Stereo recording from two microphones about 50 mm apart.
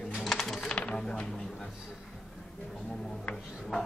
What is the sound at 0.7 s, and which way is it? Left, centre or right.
Typewriter, left.